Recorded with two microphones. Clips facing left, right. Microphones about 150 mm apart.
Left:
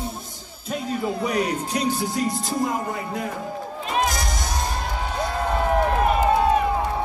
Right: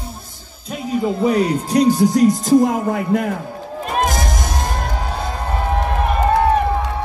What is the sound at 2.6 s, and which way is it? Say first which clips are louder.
Speech: right 8 dB; 60° right (ahead or behind).